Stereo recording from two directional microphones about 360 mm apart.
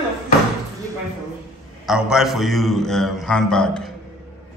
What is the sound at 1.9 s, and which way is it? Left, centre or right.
A man's voice, centre.